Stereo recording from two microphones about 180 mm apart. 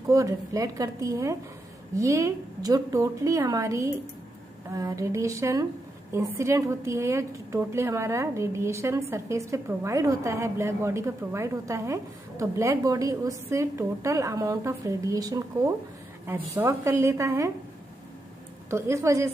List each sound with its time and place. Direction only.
0.1 s a woman's voice: 20° right (ahead or behind)
18.7 s a woman's voice: 15° right (ahead or behind)